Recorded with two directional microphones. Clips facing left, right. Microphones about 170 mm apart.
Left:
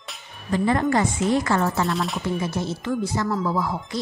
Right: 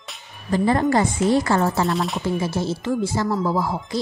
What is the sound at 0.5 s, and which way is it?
A woman's voice, 35° right (ahead or behind).